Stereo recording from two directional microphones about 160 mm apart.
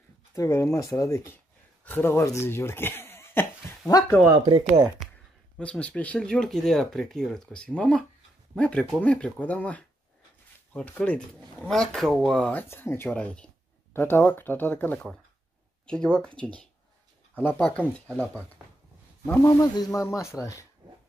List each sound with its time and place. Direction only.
0.3 s speech: 20° left (ahead or behind)
4.4 s speech: 30° right (ahead or behind)
5.6 s speech: 5° left (ahead or behind)
19.4 s speech: 20° left (ahead or behind)